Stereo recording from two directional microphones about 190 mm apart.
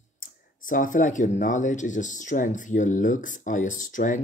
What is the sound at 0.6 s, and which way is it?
Speech, 45° left (ahead or behind).